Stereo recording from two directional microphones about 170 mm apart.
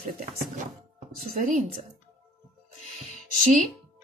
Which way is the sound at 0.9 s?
50° right (ahead or behind).